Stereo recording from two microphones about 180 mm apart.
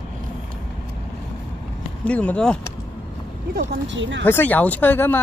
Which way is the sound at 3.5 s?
75° right (ahead or behind).